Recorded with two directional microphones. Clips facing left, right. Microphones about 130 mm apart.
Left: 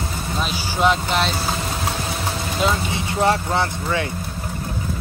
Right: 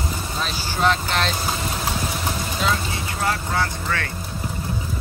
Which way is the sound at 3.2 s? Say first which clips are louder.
Left 5 dB; 25° left (ahead or behind).